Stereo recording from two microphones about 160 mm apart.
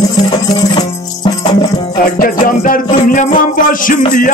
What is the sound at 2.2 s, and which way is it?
Music, 60° left (ahead or behind).